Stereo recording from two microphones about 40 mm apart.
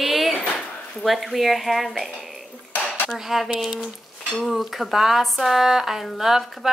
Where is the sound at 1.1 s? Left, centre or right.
Centre.